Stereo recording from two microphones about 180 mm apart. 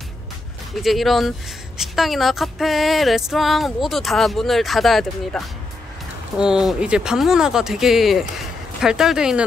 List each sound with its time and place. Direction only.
0.8 s music: centre (ahead or behind)